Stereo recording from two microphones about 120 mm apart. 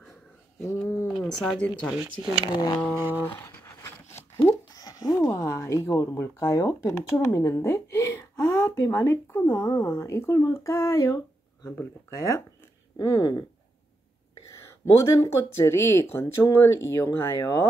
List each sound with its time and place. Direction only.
1.0 s speech: centre (ahead or behind)
2.0 s speech: 10° right (ahead or behind)
2.4 s speech: 40° left (ahead or behind)
3.2 s a sound: 20° left (ahead or behind)
4.5 s speech: 30° left (ahead or behind)
15.0 s speech: 25° left (ahead or behind)